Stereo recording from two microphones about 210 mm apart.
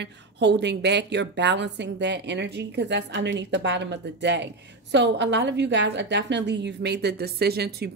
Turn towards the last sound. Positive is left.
turn(degrees=-50)  # may be behind; listen again after turning